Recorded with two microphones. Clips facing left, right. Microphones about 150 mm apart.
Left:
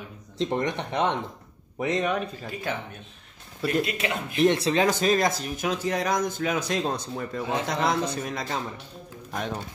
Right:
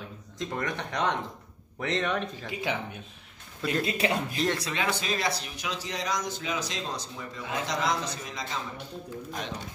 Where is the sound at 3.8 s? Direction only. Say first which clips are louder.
Right 2 dB; 30° right (ahead or behind).